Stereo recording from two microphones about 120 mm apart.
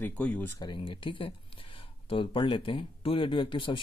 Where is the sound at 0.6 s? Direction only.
40° left (ahead or behind).